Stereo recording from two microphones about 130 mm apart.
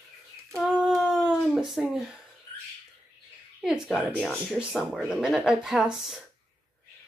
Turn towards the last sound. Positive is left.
turn(degrees=-5)  # may be behind; listen again after turning